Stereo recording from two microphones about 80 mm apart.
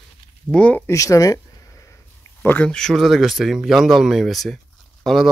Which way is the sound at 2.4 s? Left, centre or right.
Left.